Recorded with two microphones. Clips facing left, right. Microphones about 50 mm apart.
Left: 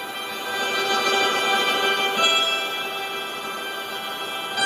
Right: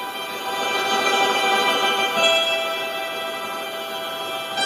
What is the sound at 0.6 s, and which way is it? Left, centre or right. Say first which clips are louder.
Music: right 1 dB; right.